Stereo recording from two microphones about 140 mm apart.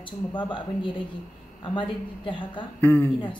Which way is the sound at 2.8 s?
15° left (ahead or behind).